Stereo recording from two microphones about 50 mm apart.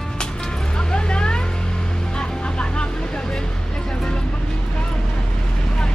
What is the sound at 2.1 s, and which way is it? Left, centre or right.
Vehicle, left.